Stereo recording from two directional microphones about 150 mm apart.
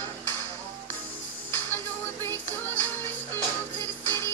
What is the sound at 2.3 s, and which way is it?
Music, 15° left (ahead or behind).